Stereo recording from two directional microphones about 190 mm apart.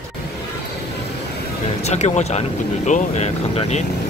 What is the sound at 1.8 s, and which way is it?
Speech, 35° left (ahead or behind).